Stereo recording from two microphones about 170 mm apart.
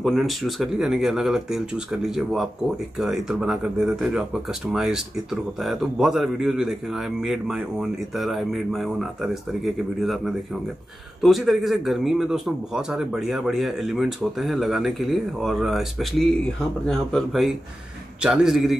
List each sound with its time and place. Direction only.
0.0 s speech: centre (ahead or behind)